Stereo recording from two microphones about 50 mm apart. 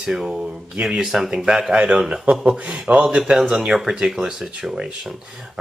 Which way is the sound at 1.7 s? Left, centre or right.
Right.